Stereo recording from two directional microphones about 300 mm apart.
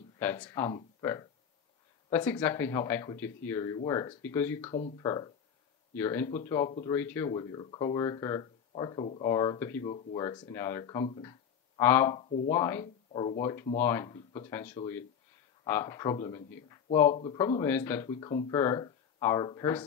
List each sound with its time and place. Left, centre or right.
0.2 s speech: centre
4.6 s speech: centre
12.4 s speech: centre